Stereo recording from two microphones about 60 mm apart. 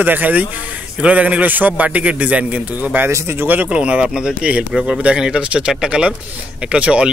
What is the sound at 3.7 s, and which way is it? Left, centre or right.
A man's voice, centre.